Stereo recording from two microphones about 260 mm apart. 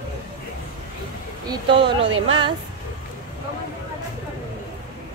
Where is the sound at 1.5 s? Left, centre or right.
Centre.